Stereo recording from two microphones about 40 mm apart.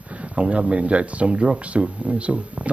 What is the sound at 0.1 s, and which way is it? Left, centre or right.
Speech, right.